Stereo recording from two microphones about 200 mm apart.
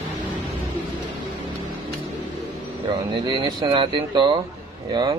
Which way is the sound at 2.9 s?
20° right (ahead or behind).